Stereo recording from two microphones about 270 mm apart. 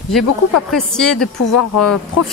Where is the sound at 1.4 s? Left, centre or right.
Left.